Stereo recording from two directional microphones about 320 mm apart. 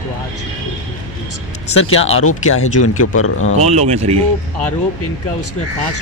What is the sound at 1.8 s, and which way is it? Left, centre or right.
Speech, left.